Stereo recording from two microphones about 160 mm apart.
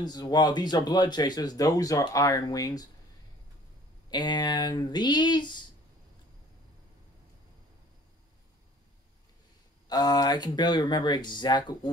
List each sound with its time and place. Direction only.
0.0 s speech: 25° left (ahead or behind)
4.1 s speech: 30° left (ahead or behind)
9.8 s speech: 25° left (ahead or behind)